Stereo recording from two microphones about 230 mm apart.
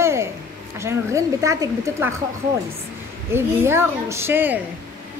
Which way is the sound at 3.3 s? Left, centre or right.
Centre.